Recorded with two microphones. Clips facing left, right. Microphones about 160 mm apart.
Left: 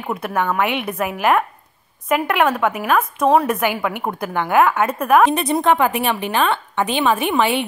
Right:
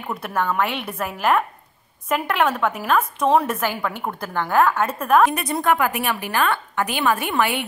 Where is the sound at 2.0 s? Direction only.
10° left (ahead or behind).